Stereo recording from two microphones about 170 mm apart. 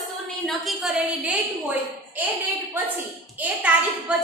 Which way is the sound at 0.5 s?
Centre (ahead or behind).